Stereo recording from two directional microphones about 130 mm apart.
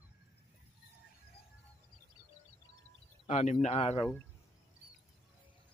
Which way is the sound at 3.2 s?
60° left (ahead or behind).